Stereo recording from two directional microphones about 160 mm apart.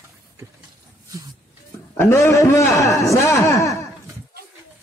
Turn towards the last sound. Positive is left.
turn(degrees=20)  # may be behind; listen again after turning